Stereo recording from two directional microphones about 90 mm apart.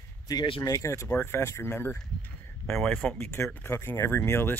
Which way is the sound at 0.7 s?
35° left (ahead or behind).